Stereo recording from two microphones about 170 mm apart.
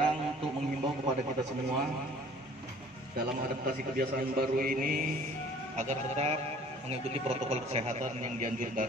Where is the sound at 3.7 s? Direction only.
65° right (ahead or behind).